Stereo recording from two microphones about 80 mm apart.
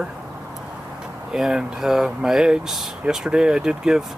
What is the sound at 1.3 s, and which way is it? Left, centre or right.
Speech, centre.